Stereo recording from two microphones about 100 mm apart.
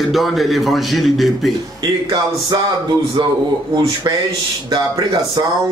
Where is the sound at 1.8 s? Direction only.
45° right (ahead or behind).